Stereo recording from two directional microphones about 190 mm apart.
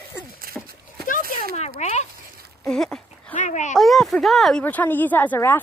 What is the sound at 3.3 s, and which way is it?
Speech, 40° left (ahead or behind).